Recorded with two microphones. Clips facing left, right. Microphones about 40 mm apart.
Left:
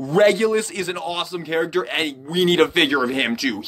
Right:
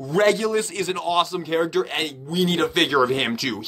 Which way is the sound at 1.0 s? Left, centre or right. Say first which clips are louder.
Right 4 dB; centre.